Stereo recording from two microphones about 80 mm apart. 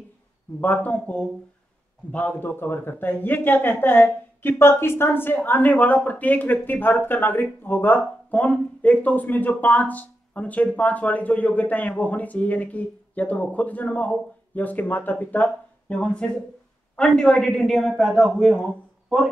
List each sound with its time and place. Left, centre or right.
0.6 s a man's voice: left; by 18.6 s centre